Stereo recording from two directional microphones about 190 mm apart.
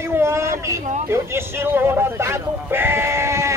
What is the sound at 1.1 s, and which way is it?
Sheep, 15° right (ahead or behind).